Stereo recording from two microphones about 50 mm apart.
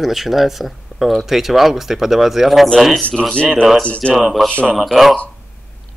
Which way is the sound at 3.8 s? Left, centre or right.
Left.